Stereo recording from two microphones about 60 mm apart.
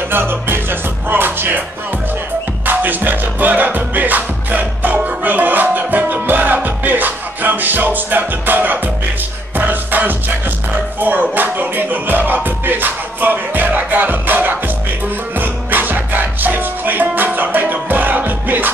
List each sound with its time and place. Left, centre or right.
0.1 s music: right
2.6 s music: right